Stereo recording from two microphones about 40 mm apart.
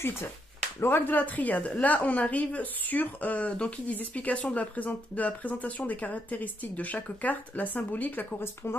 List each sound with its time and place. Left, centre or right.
0.7 s speech: left
1.0 s speech: left